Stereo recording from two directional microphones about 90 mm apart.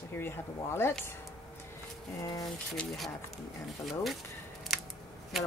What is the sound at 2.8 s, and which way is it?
Rub, centre (ahead or behind).